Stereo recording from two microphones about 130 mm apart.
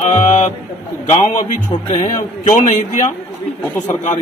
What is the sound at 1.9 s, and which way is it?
A man's voice, 75° left (ahead or behind).